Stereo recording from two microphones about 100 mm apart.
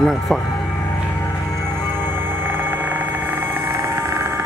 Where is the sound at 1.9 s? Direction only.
20° right (ahead or behind).